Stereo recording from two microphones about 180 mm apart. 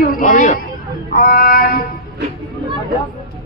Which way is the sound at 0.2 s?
45° left (ahead or behind).